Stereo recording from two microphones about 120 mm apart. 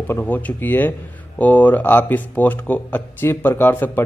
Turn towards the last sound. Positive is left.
turn(degrees=15)  # may be behind; listen again after turning